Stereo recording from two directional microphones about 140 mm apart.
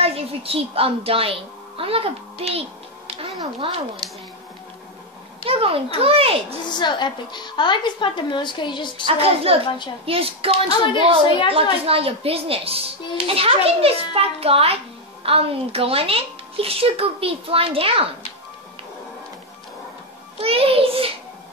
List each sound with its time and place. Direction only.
0.0 s a woman's voice: 45° right (ahead or behind)
5.4 s speech: 40° right (ahead or behind)
6.6 s a woman's voice: 35° left (ahead or behind)
9.0 s speech: 45° right (ahead or behind)
20.3 s a child's voice: 40° right (ahead or behind)